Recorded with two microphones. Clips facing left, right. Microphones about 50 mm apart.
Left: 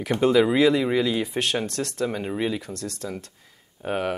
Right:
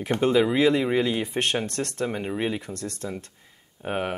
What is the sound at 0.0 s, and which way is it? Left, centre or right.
Speech, centre.